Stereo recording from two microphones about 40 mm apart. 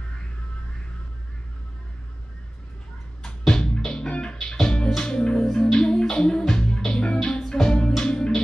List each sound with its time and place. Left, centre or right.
3.4 s music: centre